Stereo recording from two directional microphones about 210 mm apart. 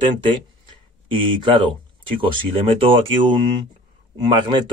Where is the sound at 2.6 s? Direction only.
25° right (ahead or behind).